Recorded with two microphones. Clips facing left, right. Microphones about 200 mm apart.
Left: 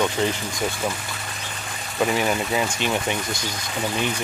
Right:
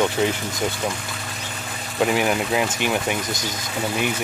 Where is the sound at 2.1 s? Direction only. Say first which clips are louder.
Right 2 dB; 10° right (ahead or behind).